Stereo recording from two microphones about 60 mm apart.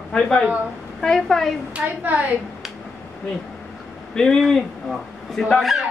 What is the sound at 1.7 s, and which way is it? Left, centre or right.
Speech, right.